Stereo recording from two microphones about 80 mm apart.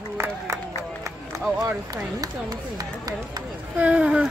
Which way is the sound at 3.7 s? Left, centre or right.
Centre.